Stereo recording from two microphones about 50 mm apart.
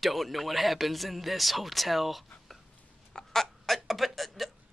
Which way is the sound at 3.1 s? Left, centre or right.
Centre.